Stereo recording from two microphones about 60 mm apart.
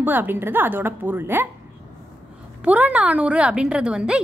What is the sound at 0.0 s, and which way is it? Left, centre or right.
A woman's voice, right.